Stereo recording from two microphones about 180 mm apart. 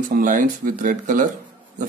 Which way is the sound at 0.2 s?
45° right (ahead or behind).